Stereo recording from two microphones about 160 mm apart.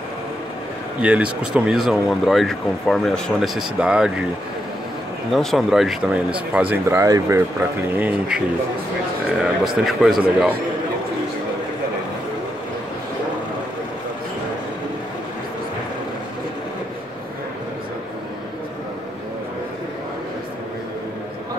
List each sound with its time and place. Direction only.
1.0 s speech: 10° right (ahead or behind)
5.3 s speech: centre (ahead or behind)
9.4 s speech: centre (ahead or behind)